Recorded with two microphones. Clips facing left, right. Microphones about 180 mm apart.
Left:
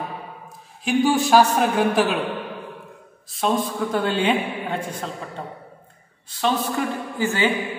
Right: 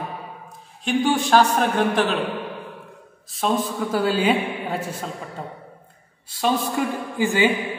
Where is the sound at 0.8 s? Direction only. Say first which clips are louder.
Left 2 dB; 5° left (ahead or behind).